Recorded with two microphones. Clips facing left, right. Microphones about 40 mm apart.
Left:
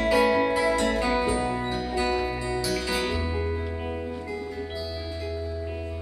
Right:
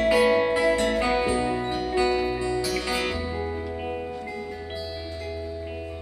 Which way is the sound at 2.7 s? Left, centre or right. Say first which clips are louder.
Right 1 dB; right.